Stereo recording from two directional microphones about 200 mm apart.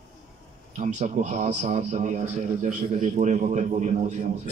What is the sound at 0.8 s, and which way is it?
A man's voice, 35° right (ahead or behind).